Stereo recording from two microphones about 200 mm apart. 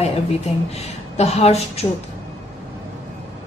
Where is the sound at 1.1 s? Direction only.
30° left (ahead or behind).